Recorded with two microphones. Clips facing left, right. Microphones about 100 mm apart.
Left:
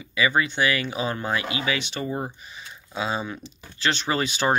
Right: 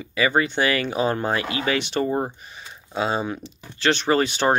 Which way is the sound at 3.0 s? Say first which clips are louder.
Right 4 dB; 40° right (ahead or behind).